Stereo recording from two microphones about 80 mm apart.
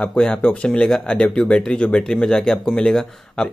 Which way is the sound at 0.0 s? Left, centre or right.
Centre.